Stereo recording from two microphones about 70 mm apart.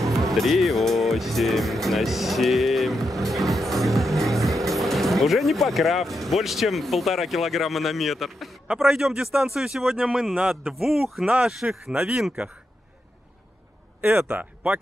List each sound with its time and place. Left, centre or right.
0.2 s speech: centre
3.2 s music: centre
4.6 s speech: centre
14.2 s speech: centre